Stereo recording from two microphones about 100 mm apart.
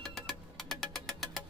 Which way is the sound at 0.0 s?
Centre (ahead or behind).